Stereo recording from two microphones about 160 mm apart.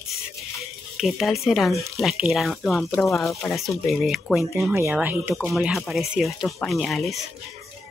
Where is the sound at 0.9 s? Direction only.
Centre (ahead or behind).